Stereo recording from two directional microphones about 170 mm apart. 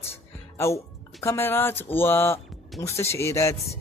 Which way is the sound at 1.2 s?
15° left (ahead or behind).